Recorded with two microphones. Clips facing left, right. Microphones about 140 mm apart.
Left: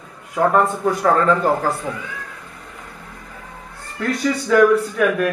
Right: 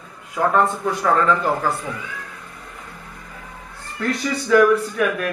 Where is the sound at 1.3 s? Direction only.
30° left (ahead or behind).